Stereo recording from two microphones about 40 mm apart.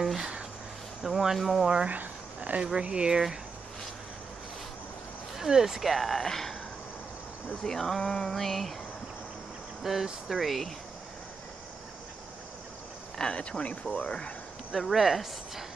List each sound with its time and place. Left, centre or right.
1.0 s speech: centre
1.9 s a sound: right
2.6 s speech: right
5.4 s speech: centre
7.6 s a sound: centre
9.8 s speech: centre
13.2 s speech: left
14.7 s speech: centre